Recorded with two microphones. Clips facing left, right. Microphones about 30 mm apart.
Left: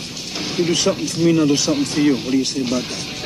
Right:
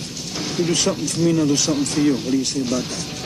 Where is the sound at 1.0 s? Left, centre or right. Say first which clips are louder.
Left 3 dB; left.